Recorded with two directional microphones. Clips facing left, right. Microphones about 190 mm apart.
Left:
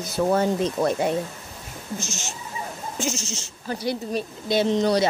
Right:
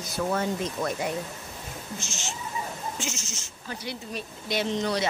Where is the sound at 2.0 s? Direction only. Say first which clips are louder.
Left 3 dB; 40° left (ahead or behind).